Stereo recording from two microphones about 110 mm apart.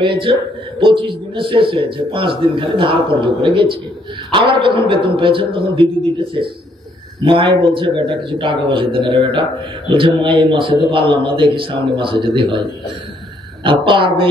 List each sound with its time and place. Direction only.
0.0 s a man's voice: 50° right (ahead or behind)
7.2 s a man's voice: 50° right (ahead or behind)
13.7 s a man's voice: 50° right (ahead or behind)